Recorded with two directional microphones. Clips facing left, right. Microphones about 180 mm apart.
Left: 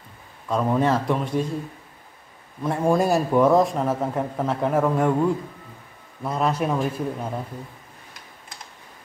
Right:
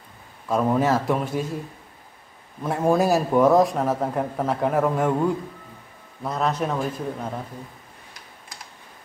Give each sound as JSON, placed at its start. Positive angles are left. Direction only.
{"t": 0.5, "sound": "a man's voice", "side_deg": -5}
{"t": 2.6, "sound": "a man's voice", "side_deg": -5}
{"t": 6.2, "sound": "a man's voice", "side_deg": 10}